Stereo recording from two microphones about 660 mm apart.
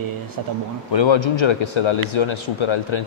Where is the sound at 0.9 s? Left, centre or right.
Left.